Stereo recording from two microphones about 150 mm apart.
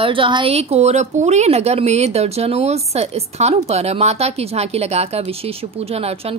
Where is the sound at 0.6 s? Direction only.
45° right (ahead or behind).